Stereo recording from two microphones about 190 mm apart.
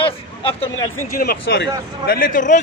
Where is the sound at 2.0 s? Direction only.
45° left (ahead or behind).